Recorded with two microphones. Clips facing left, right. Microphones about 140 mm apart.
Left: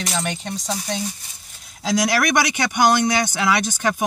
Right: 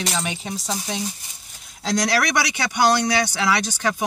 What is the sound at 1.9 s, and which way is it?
Speech, 10° left (ahead or behind).